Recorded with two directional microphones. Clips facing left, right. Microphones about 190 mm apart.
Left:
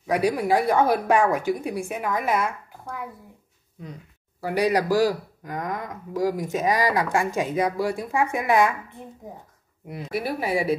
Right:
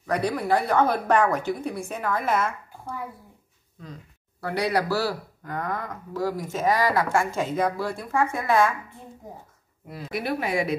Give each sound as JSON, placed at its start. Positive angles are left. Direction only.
{"t": 0.0, "sound": "speech", "side_deg": 10}
{"t": 4.4, "sound": "speech", "side_deg": 10}
{"t": 10.4, "sound": "a woman's voice", "side_deg": 35}